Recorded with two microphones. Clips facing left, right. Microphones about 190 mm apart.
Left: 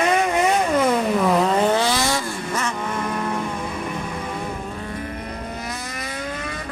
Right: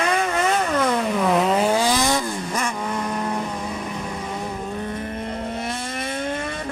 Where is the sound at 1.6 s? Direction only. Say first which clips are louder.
Even; 10° right (ahead or behind).